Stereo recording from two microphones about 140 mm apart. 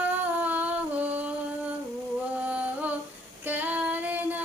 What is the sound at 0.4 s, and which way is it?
Singing, 10° right (ahead or behind).